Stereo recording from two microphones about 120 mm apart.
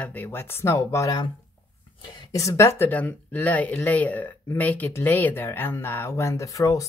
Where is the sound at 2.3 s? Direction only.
25° left (ahead or behind).